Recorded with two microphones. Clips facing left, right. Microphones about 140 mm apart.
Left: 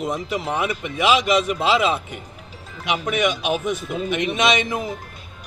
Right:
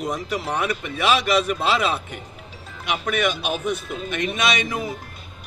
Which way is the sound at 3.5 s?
15° left (ahead or behind).